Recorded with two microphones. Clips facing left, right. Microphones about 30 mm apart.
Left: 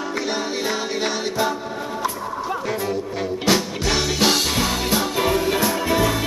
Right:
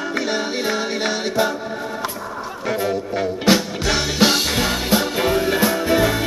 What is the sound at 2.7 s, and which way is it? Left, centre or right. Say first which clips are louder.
Music: right 3 dB; centre.